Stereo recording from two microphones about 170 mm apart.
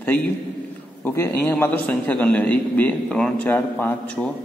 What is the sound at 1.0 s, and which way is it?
A man's voice, 15° left (ahead or behind).